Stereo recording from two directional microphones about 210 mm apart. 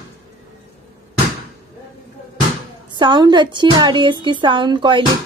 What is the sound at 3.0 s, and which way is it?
Speech, 20° right (ahead or behind).